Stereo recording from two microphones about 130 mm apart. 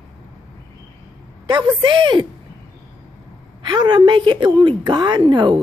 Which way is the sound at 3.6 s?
35° right (ahead or behind).